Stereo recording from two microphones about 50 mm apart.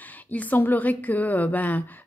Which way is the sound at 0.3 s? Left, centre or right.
Left.